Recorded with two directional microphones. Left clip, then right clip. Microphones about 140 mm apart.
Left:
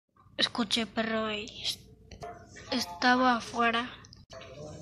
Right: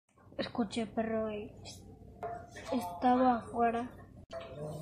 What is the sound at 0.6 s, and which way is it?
Speech, 10° left (ahead or behind).